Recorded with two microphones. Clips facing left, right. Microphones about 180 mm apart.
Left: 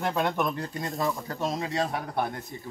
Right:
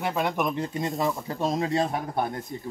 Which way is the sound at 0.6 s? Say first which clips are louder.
Right 3 dB; 20° right (ahead or behind).